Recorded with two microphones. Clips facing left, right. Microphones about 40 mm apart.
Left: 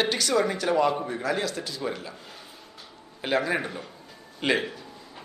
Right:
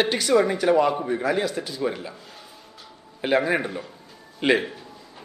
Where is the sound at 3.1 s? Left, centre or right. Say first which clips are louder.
Right 4 dB; centre.